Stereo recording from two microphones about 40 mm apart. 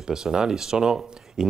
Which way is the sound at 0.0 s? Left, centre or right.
Centre.